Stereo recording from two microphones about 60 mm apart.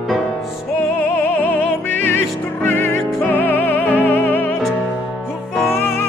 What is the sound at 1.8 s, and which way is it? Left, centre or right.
Music, left.